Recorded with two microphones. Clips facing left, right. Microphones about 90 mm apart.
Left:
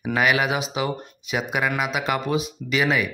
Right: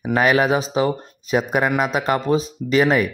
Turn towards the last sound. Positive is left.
turn(degrees=-40)  # may be behind; listen again after turning